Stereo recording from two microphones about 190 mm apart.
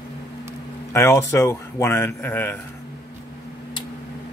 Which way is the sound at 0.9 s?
15° left (ahead or behind).